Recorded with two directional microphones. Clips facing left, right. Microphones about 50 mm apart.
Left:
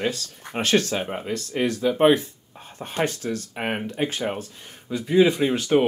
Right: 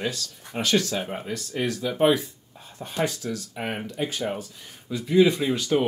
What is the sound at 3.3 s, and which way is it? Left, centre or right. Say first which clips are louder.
Speech: left 3 dB; left.